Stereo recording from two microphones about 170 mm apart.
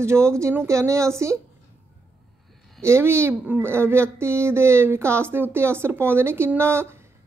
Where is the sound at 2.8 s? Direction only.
15° right (ahead or behind).